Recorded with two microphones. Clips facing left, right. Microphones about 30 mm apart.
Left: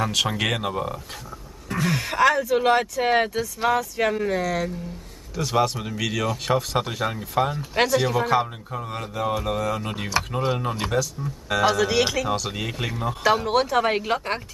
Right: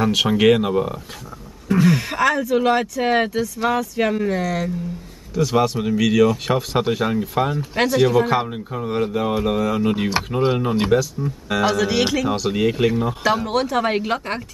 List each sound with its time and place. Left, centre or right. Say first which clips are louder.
0.0 s speech: right 7 dB; centre
8.4 s speech: right 2 dB; centre